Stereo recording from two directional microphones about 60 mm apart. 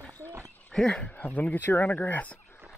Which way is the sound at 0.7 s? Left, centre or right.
Centre.